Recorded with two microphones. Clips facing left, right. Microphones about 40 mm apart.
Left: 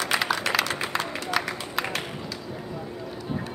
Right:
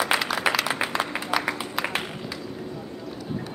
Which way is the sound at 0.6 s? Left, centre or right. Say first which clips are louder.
Right 2 dB; centre.